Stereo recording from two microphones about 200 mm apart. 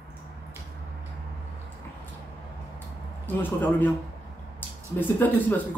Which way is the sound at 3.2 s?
10° left (ahead or behind).